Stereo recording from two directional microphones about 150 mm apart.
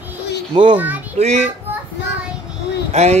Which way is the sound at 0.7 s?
10° right (ahead or behind).